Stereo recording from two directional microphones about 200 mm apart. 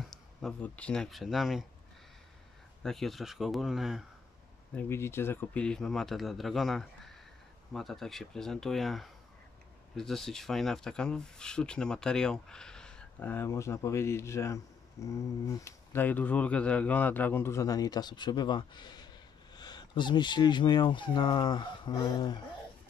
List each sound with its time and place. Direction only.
0.1 s speech: 5° left (ahead or behind)
2.8 s speech: centre (ahead or behind)
4.7 s speech: 10° left (ahead or behind)